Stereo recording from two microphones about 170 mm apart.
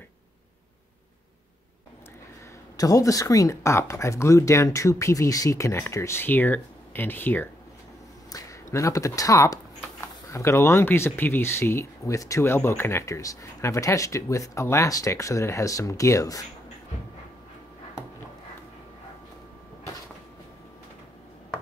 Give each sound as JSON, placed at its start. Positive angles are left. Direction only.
{"t": 2.8, "sound": "speech", "side_deg": 20}